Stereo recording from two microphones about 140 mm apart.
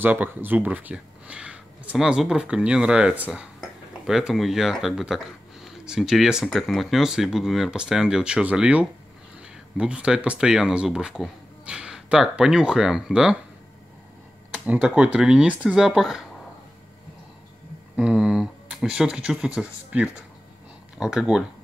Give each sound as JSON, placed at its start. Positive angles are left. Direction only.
{"t": 0.0, "sound": "speech", "side_deg": -15}
{"t": 14.5, "sound": "speech", "side_deg": -10}
{"t": 17.9, "sound": "speech", "side_deg": -5}